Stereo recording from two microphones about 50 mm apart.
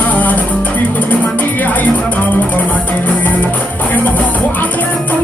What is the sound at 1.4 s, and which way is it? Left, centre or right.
Music, left.